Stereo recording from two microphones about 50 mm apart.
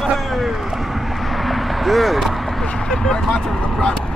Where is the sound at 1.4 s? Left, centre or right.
Centre.